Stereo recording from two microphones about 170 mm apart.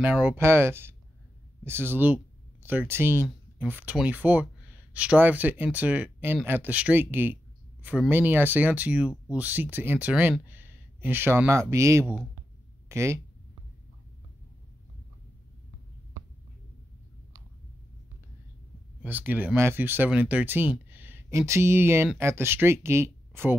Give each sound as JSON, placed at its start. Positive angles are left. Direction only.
{"t": 0.0, "sound": "speech", "side_deg": -10}
{"t": 19.0, "sound": "speech", "side_deg": -10}